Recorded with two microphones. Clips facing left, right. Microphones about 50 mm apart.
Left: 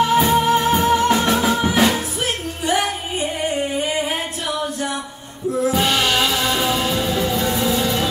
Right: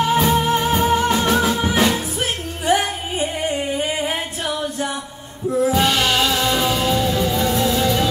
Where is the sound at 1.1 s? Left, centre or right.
Centre.